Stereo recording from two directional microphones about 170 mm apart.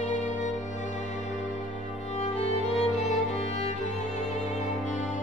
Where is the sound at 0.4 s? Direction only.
45° left (ahead or behind).